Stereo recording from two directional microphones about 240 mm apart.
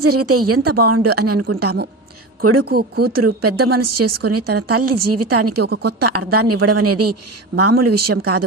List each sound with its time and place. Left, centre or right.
0.0 s a woman's voice: right
2.6 s speech: right
3.3 s a woman's voice: right
3.8 s a woman's voice: right